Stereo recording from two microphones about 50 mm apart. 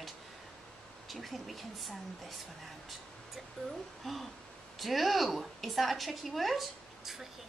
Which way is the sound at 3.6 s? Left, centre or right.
Centre.